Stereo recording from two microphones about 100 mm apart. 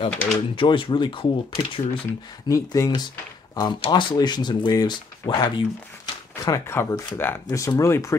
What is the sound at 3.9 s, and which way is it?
Speech, 50° left (ahead or behind).